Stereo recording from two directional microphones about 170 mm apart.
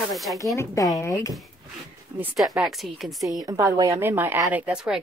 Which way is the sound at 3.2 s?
20° right (ahead or behind).